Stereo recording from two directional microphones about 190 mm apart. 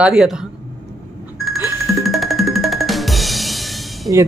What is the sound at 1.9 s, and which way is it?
Drum, centre (ahead or behind).